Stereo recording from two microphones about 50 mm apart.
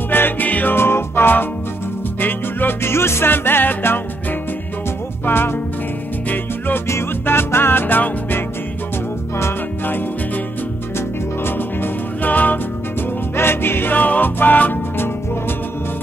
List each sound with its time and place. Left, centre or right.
0.1 s music: left
0.5 s music: left
0.7 s music: left
2.9 s music: left
9.8 s music: left
11.4 s music: left
13.4 s music: left
13.9 s music: left